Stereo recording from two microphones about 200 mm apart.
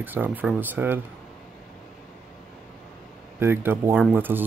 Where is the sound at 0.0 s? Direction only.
10° right (ahead or behind).